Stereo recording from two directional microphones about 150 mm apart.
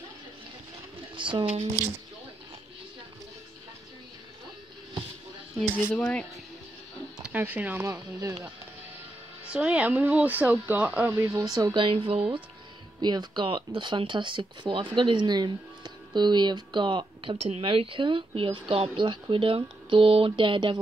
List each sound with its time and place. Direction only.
1.1 s speech: 35° right (ahead or behind)
5.8 s speech: 10° left (ahead or behind)
7.2 s speech: 10° right (ahead or behind)
9.5 s speech: 10° right (ahead or behind); by 20.8 s 35° right (ahead or behind)